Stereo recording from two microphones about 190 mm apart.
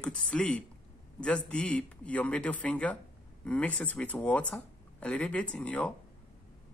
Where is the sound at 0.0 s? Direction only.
5° left (ahead or behind).